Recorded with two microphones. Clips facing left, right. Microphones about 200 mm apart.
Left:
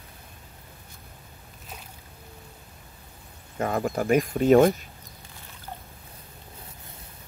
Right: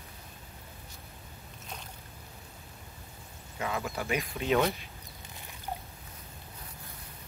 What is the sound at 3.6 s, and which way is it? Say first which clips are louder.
Speech: left 8 dB; 50° left (ahead or behind).